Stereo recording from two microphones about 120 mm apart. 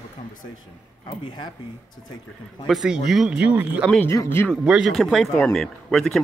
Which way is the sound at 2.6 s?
5° right (ahead or behind).